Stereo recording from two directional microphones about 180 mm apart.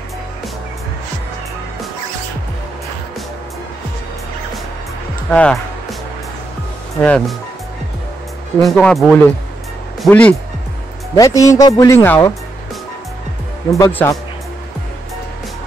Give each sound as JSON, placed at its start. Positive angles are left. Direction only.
{"t": 5.3, "sound": "music", "side_deg": 5}
{"t": 7.0, "sound": "speech", "side_deg": 5}
{"t": 8.6, "sound": "speech", "side_deg": 5}
{"t": 11.1, "sound": "speech", "side_deg": 20}
{"t": 13.7, "sound": "speech", "side_deg": 15}